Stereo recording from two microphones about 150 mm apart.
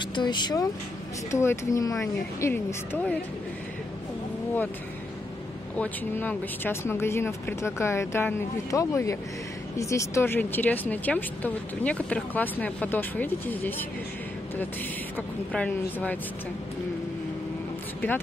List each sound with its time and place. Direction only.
0.0 s speech: 30° left (ahead or behind)
1.3 s speech: 20° left (ahead or behind)
5.8 s speech: 15° left (ahead or behind)
15.1 s speech: 10° left (ahead or behind)